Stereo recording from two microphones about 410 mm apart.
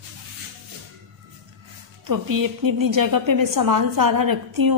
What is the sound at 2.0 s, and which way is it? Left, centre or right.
A woman's voice, right.